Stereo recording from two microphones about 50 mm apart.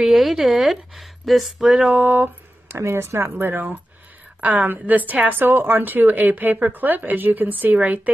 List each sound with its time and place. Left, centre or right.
0.0 s speech: centre
1.6 s a sound: centre
1.9 s speech: right
2.7 s speech: right
4.4 s speech: right
5.4 s speech: right